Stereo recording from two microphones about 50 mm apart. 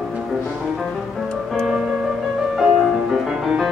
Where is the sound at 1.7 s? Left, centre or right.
Centre.